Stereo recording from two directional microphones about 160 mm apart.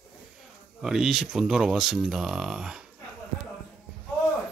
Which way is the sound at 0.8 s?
5° right (ahead or behind).